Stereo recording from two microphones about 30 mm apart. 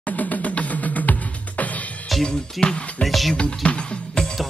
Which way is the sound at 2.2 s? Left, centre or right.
Left.